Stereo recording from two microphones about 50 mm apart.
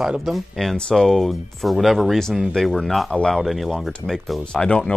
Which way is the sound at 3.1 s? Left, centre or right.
Centre.